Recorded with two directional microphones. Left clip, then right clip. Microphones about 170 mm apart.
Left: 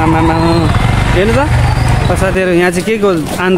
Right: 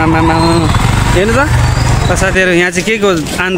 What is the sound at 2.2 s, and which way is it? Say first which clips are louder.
Speech: right 2 dB; 5° left (ahead or behind).